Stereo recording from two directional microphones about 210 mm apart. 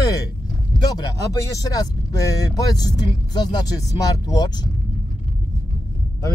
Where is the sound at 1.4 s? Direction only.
15° left (ahead or behind).